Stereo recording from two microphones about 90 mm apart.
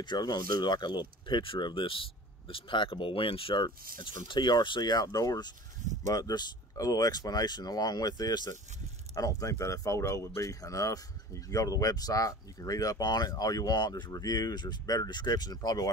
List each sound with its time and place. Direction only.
0.0 s speech: 55° left (ahead or behind); by 3.6 s 85° left
3.6 s speech: 60° left (ahead or behind)